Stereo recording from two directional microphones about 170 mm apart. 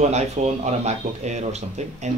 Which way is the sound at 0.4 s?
40° right (ahead or behind).